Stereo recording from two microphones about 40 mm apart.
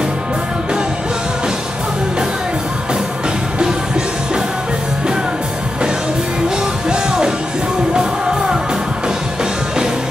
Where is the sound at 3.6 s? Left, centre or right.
Centre.